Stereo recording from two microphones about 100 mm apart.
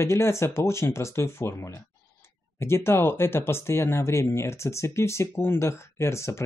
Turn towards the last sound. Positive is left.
turn(degrees=30)  # may be behind; listen again after turning